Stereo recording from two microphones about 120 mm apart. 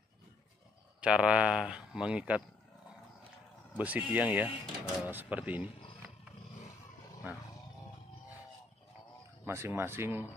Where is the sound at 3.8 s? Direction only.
10° right (ahead or behind).